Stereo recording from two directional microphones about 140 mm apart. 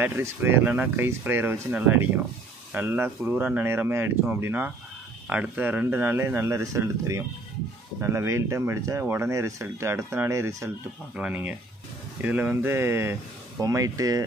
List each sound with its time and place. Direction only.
0.0 s speech: 15° right (ahead or behind)
11.1 s speech: 10° right (ahead or behind); by 14.2 s 25° right (ahead or behind)